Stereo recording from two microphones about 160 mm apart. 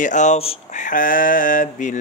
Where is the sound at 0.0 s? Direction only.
50° left (ahead or behind).